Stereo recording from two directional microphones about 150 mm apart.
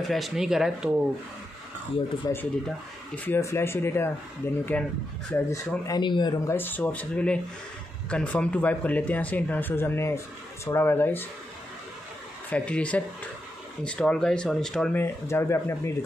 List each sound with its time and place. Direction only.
0.0 s speech: centre (ahead or behind)
2.3 s speech: 25° left (ahead or behind)
6.4 s speech: 15° left (ahead or behind)
12.4 s speech: 10° left (ahead or behind)
15.0 s speech: 15° left (ahead or behind)